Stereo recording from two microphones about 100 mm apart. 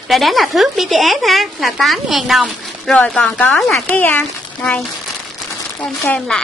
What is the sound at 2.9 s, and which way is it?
Speech, 15° left (ahead or behind).